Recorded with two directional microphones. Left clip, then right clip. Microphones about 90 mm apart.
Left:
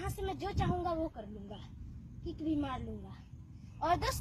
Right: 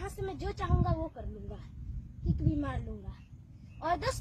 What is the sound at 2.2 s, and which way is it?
Speech, 25° right (ahead or behind).